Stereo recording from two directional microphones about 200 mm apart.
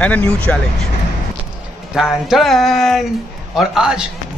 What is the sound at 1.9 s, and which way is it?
A man's voice, centre (ahead or behind).